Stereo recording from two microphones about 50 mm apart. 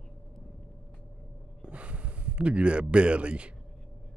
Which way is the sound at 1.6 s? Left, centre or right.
Right.